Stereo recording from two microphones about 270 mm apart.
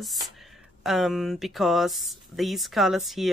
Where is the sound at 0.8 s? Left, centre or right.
Centre.